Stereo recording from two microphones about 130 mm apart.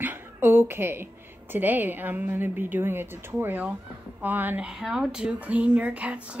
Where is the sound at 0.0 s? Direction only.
15° right (ahead or behind).